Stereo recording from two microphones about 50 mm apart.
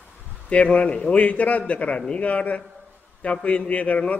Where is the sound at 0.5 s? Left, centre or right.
Left.